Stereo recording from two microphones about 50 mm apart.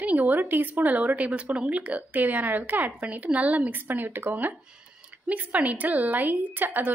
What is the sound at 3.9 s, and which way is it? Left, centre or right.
A woman's voice, right.